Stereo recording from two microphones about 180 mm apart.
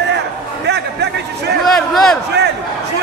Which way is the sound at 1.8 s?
Centre (ahead or behind).